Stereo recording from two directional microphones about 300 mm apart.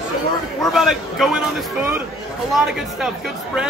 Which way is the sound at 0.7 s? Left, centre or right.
Centre.